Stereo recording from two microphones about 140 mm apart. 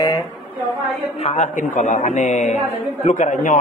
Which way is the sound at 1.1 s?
50° left (ahead or behind).